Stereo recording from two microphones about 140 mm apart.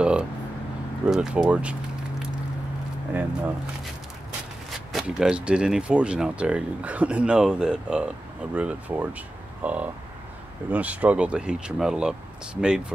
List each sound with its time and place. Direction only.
0.0 s a sound: 5° right (ahead or behind)
1.0 s speech: 5° right (ahead or behind)
4.9 s speech: 5° right (ahead or behind)